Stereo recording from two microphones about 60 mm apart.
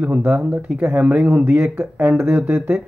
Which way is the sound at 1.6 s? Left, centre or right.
Centre.